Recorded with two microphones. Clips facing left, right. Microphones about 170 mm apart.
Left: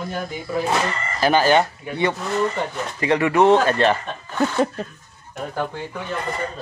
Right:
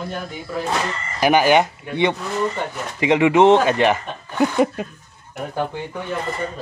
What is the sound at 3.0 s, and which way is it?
Speech, 15° right (ahead or behind).